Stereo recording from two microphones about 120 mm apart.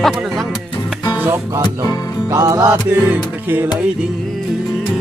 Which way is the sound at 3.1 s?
15° right (ahead or behind).